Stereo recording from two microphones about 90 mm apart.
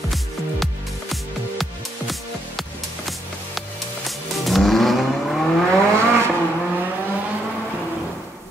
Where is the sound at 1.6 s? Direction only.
Centre (ahead or behind).